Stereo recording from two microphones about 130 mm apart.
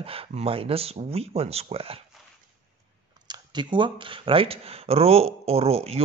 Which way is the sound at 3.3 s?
35° right (ahead or behind).